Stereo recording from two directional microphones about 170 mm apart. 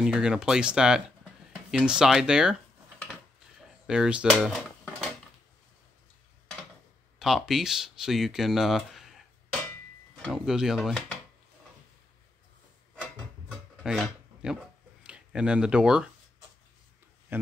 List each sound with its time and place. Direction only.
0.0 s speech: 5° right (ahead or behind)
1.2 s a sound: centre (ahead or behind)
3.8 s speech: 5° right (ahead or behind)
7.2 s speech: centre (ahead or behind)
13.0 s a sound: 5° right (ahead or behind)
15.0 s speech: 5° right (ahead or behind)
17.3 s speech: 15° right (ahead or behind)